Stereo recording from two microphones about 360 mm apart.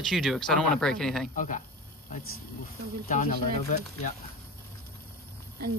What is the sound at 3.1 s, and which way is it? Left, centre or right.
Speech, left.